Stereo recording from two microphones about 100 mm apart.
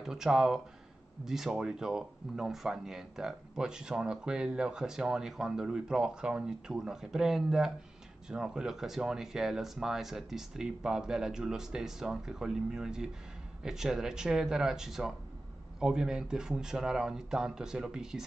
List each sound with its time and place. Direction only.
0.0 s speech: 5° right (ahead or behind)